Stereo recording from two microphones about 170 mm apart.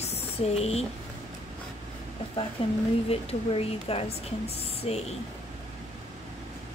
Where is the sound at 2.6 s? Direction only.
35° left (ahead or behind).